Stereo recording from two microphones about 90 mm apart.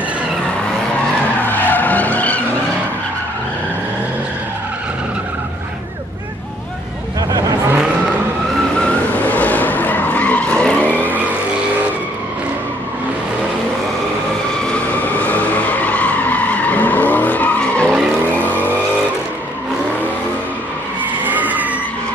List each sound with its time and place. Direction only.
1.4 s skidding: 20° left (ahead or behind)
7.2 s vehicle: 40° right (ahead or behind)
9.2 s vehicle: 15° left (ahead or behind)
14.6 s skidding: 15° left (ahead or behind)
21.3 s vehicle: 20° right (ahead or behind)